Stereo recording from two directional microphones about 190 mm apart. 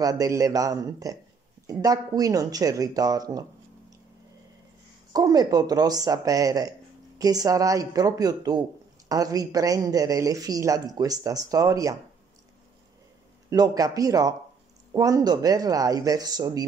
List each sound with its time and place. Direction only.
0.0 s speech: 20° right (ahead or behind)
5.1 s speech: 20° right (ahead or behind)
13.5 s speech: 20° right (ahead or behind)